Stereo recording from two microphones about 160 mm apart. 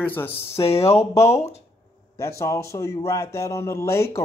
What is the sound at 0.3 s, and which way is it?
Speech, 40° left (ahead or behind).